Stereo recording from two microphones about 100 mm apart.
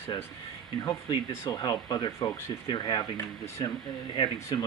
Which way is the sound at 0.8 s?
50° left (ahead or behind).